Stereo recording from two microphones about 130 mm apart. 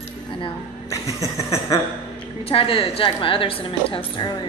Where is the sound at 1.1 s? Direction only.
20° left (ahead or behind).